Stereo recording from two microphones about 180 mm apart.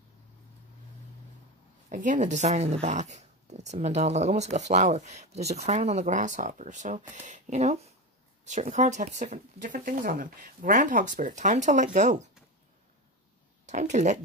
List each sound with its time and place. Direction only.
1.9 s speech: 45° right (ahead or behind)
13.7 s speech: 40° right (ahead or behind)